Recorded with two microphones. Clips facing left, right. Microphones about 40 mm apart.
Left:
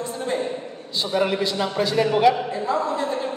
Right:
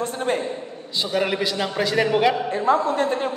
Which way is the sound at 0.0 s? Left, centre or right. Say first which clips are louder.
Right 3 dB; right.